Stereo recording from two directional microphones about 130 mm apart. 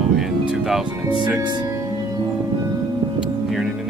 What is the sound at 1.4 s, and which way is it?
Speech, 35° right (ahead or behind).